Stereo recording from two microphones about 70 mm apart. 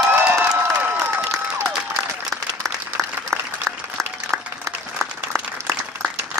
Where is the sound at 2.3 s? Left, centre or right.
Centre.